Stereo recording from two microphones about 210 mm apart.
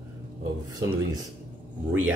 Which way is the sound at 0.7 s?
20° right (ahead or behind).